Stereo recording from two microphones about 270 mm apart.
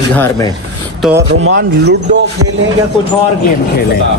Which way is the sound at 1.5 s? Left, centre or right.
Right.